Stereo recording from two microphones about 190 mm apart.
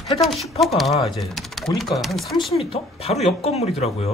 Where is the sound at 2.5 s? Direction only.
30° left (ahead or behind).